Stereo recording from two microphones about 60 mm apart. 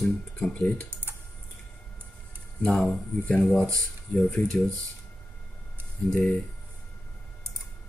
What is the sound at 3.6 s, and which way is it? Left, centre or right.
Speech, left.